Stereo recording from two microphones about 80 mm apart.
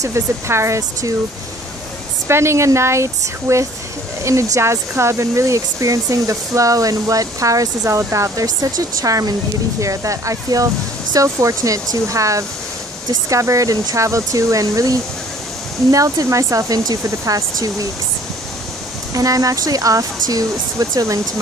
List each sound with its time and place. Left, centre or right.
0.0 s speech: right
2.2 s speech: right
19.1 s speech: right